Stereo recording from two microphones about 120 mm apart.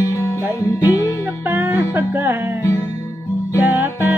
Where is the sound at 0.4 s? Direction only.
15° right (ahead or behind).